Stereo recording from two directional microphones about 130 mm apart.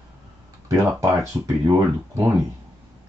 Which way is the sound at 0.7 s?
20° right (ahead or behind).